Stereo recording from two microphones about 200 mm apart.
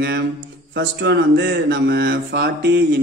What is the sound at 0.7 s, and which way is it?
A man's voice, 60° right (ahead or behind).